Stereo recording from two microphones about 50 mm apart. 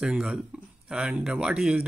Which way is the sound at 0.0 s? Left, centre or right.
Centre.